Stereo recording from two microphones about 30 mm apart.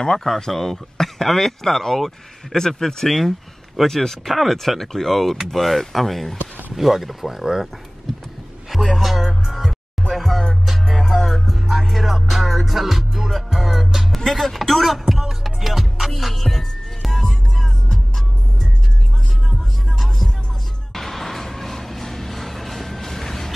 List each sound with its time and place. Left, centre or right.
0.5 s speech: centre
3.1 s speech: centre
4.3 s speech: centre
8.1 s a sound: centre
8.6 s speech: centre
10.1 s music: centre
14.1 s music: centre
20.9 s vehicle: centre